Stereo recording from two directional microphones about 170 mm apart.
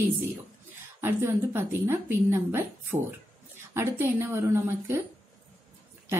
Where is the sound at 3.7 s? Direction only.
15° right (ahead or behind).